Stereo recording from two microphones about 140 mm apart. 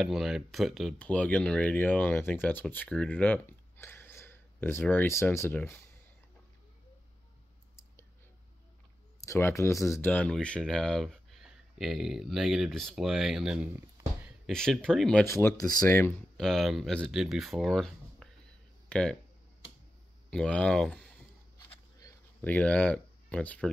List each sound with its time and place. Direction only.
0.0 s speech: centre (ahead or behind); by 5.8 s 15° left (ahead or behind)
9.2 s speech: 20° left (ahead or behind)
16.3 s speech: centre (ahead or behind)
20.2 s speech: 5° left (ahead or behind)
21.5 s a sound: 25° left (ahead or behind)
22.4 s speech: 10° left (ahead or behind)